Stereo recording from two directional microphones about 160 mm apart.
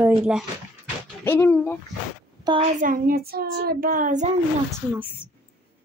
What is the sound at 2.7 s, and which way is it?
A child's voice, 60° right (ahead or behind).